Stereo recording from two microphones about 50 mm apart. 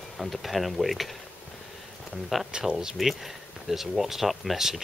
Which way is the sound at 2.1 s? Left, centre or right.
Centre.